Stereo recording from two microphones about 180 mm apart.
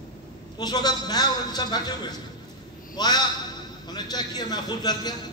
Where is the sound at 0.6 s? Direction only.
20° left (ahead or behind).